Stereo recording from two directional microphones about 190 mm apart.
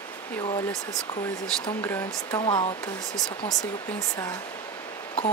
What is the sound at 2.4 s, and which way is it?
Speech, 25° left (ahead or behind).